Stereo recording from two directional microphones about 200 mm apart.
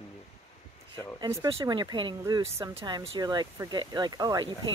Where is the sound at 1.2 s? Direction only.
20° right (ahead or behind).